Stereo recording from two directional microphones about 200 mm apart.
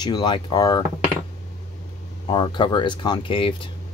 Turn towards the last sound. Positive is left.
turn(degrees=25)  # may be behind; listen again after turning